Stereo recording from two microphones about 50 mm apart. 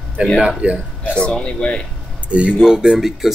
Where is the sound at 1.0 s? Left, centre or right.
Left.